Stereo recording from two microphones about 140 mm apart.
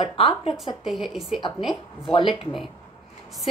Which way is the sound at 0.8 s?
Centre (ahead or behind).